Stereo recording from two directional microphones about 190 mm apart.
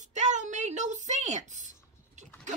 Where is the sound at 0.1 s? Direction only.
40° right (ahead or behind).